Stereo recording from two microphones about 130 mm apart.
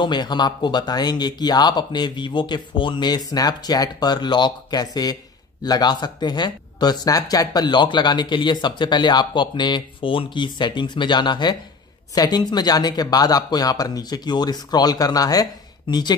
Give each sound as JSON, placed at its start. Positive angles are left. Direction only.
{"t": 0.0, "sound": "speech", "side_deg": 35}